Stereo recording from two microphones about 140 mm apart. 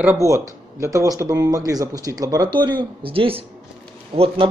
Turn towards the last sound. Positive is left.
turn(degrees=-40)  # may be behind; listen again after turning